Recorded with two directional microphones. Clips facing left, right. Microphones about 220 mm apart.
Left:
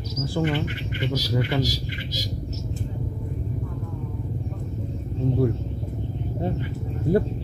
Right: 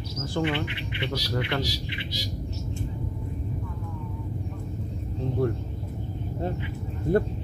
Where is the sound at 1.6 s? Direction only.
45° left (ahead or behind).